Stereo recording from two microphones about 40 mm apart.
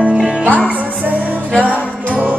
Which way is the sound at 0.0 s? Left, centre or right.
Right.